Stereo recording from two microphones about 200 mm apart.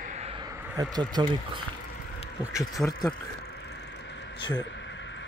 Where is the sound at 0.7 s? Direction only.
20° right (ahead or behind).